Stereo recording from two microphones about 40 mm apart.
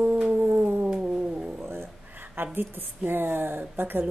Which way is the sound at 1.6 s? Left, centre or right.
Right.